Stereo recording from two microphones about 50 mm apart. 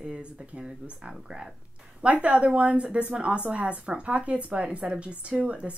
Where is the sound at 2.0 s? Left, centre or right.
Right.